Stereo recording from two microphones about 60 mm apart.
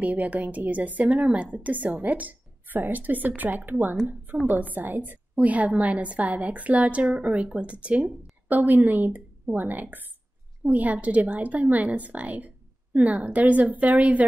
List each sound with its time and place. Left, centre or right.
0.0 s a woman's voice: right